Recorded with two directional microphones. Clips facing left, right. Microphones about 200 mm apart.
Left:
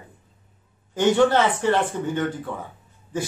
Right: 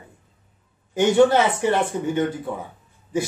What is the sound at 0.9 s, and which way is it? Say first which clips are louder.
Speech: right 2 dB; 10° right (ahead or behind).